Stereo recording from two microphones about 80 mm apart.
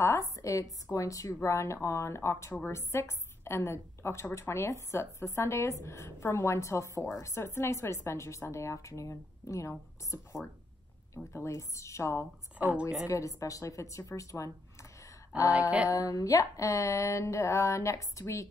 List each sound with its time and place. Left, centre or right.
0.0 s a woman's voice: left
11.3 s a woman's voice: left
12.5 s a woman's voice: centre
13.0 s a woman's voice: left
15.9 s a woman's voice: left